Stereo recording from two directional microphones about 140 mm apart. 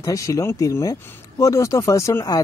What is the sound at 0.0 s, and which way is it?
Speech, 25° left (ahead or behind).